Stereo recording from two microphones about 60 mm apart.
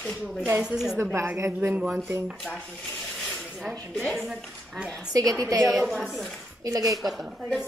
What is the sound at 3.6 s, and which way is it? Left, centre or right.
Speech, centre.